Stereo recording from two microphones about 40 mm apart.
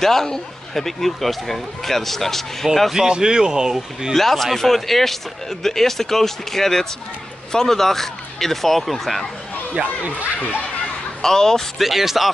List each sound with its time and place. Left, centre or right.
0.0 s speech: centre
2.6 s speech: centre
3.1 s speech: centre
4.1 s speech: centre
11.2 s speech: centre
11.8 s speech: centre